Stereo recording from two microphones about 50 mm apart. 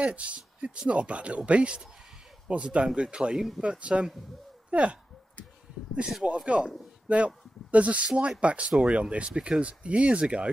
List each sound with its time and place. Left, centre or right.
0.0 s speech: right
3.3 s speech: centre
3.6 s speech: right
6.2 s speech: right